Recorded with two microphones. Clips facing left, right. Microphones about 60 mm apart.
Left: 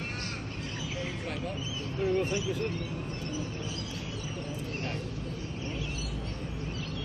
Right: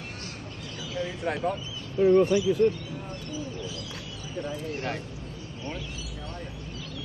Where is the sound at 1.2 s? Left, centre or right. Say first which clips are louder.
Right 8 dB; right.